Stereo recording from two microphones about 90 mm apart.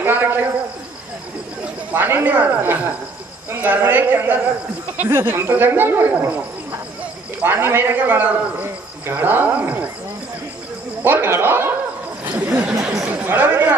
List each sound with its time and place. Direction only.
0.0 s a sound: 25° right (ahead or behind)
1.9 s speech: 25° right (ahead or behind)
11.0 s speech: 25° right (ahead or behind)